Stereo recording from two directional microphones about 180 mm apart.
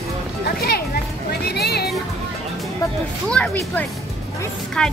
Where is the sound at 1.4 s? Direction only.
65° left (ahead or behind).